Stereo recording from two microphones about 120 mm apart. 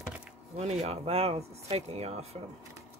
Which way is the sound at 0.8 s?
60° right (ahead or behind).